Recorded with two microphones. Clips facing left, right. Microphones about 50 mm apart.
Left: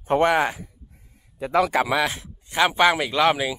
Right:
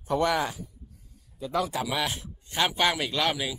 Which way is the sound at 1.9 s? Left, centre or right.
Left.